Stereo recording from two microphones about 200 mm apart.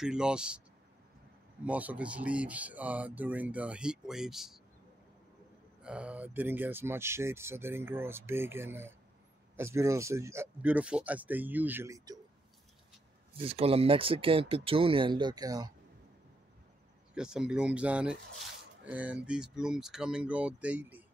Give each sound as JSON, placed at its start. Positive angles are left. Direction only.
{"t": 0.0, "sound": "speech", "side_deg": -5}
{"t": 1.6, "sound": "speech", "side_deg": -5}
{"t": 5.8, "sound": "speech", "side_deg": -5}
{"t": 13.4, "sound": "speech", "side_deg": -30}
{"t": 17.1, "sound": "speech", "side_deg": -5}